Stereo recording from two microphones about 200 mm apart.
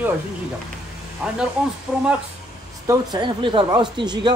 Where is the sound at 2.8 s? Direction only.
20° right (ahead or behind).